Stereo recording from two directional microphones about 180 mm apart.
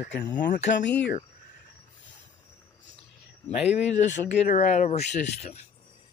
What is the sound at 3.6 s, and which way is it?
Speech, 35° left (ahead or behind).